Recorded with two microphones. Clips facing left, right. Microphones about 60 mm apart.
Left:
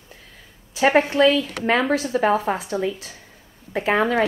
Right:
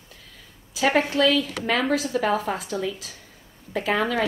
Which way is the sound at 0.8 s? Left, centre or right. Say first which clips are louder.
Left 4 dB; left.